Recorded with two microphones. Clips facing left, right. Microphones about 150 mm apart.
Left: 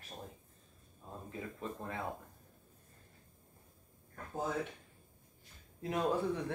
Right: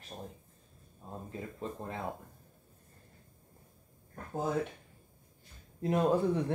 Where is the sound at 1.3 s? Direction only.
30° right (ahead or behind).